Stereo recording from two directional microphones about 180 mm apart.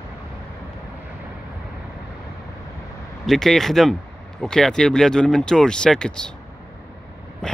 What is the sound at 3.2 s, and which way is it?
Speech, centre (ahead or behind).